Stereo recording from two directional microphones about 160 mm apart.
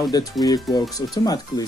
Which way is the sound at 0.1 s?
25° left (ahead or behind).